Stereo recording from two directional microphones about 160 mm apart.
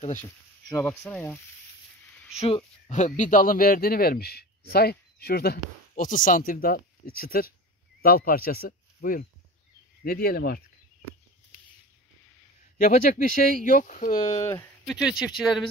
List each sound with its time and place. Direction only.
0.7 s speech: 10° left (ahead or behind)
2.3 s speech: 40° left (ahead or behind); by 5.6 s 80° left
5.9 s speech: 55° left (ahead or behind); by 10.6 s 75° left (ahead or behind)
12.7 s speech: 55° left (ahead or behind)
14.4 s speech: 20° left (ahead or behind)
14.9 s speech: 5° right (ahead or behind)